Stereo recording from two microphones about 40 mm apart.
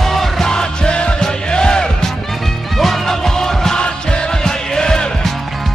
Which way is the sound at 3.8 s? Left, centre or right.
Left.